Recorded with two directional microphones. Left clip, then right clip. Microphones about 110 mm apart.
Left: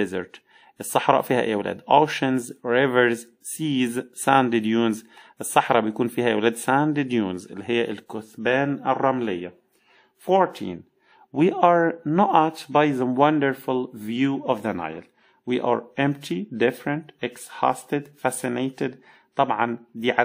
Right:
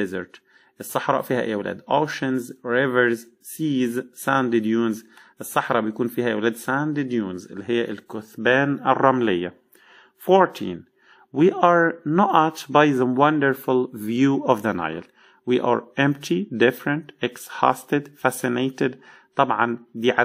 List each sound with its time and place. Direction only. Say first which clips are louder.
0.0 s speech: left 1 dB; 15° left (ahead or behind)
7.3 s speech: even; 15° left (ahead or behind)
8.4 s speech: right 3 dB; 15° right (ahead or behind)
9.0 s speech: right 4 dB; 30° right (ahead or behind)
10.2 s speech: right 3 dB; 15° right (ahead or behind)
11.3 s speech: right 1 dB; 10° left (ahead or behind)
12.6 s speech: right 3 dB; 10° right (ahead or behind)
13.1 s speech: right 1 dB; centre (ahead or behind)
13.5 s speech: right 4 dB; 20° right (ahead or behind)
14.3 s speech: right 6 dB; 35° right (ahead or behind)
14.6 s speech: right 3 dB; 20° right (ahead or behind)
15.4 s speech: right 2 dB; 5° right (ahead or behind)
15.9 s speech: right 3 dB; 15° right (ahead or behind)
19.3 s speech: right 2 dB; 5° right (ahead or behind)